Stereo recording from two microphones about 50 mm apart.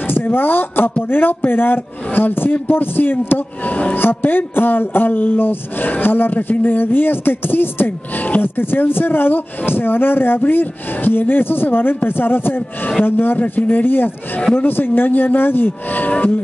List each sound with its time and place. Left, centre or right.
0.1 s speech: left
4.0 s speech: left
13.4 s speech: left